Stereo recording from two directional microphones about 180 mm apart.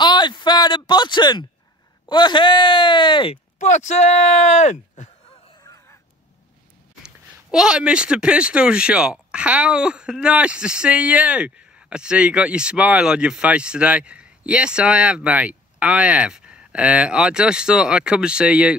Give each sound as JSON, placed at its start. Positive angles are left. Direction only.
{"t": 0.0, "sound": "a sound", "side_deg": 25}
{"t": 2.0, "sound": "speech", "side_deg": 25}
{"t": 3.5, "sound": "speech", "side_deg": 40}
{"t": 5.6, "sound": "crow", "side_deg": 20}
{"t": 7.5, "sound": "speech", "side_deg": -5}